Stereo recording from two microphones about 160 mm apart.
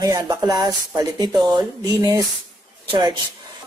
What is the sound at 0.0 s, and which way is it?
Speech, 20° right (ahead or behind).